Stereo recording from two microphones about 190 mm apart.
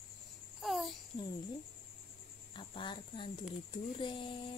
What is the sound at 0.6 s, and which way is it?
Speech, centre (ahead or behind).